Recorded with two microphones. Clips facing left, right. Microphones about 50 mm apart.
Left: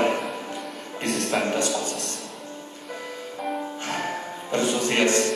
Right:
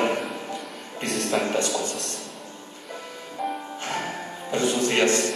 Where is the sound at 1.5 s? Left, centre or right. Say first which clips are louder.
Even; left.